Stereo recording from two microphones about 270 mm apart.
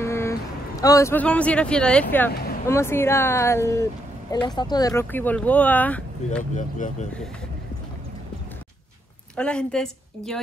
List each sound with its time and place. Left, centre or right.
0.0 s speech: centre
6.5 s speech: left
9.4 s a woman's voice: centre